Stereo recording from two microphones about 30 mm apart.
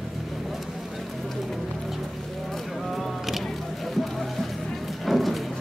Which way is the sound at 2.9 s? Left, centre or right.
Centre.